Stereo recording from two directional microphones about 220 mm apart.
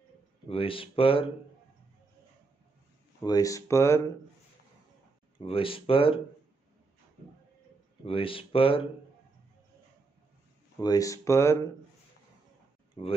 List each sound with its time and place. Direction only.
0.5 s speech: 25° left (ahead or behind)
3.2 s speech: 15° left (ahead or behind)
5.4 s speech: 25° left (ahead or behind)
8.0 s speech: 25° left (ahead or behind)
10.8 s speech: 15° left (ahead or behind)
13.0 s speech: 30° left (ahead or behind)